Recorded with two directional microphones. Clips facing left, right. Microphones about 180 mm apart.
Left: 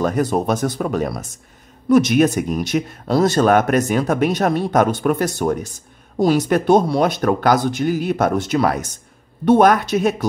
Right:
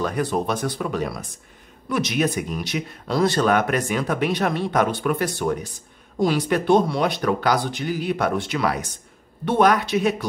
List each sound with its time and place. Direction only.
0.0 s speech: 45° left (ahead or behind)